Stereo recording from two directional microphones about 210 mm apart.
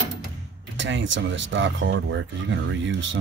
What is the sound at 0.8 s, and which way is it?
Speech, 60° right (ahead or behind).